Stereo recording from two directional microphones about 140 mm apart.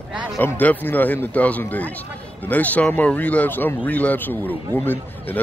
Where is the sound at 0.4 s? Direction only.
15° left (ahead or behind).